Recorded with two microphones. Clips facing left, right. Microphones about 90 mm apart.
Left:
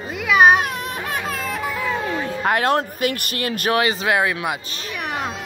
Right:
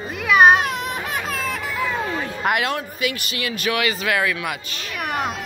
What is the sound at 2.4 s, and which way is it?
A man's voice, 40° left (ahead or behind).